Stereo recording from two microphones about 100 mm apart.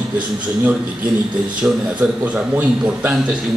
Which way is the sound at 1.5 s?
5° right (ahead or behind).